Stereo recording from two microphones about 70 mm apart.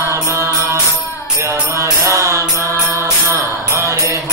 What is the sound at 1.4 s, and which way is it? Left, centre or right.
Mantra, right.